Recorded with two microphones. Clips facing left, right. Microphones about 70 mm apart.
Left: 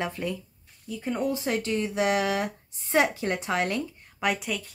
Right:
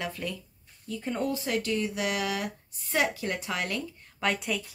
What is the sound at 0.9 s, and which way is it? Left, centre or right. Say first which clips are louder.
Speech: left 2 dB; centre.